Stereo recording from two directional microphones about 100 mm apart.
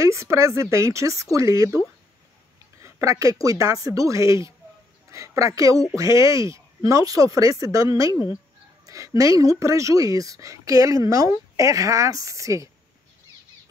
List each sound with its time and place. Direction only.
0.0 s speech: 30° right (ahead or behind)
2.8 s speech: 30° right (ahead or behind)